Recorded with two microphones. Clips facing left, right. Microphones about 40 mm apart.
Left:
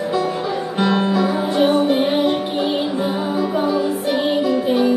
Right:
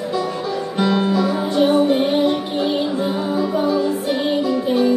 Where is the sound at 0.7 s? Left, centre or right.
Centre.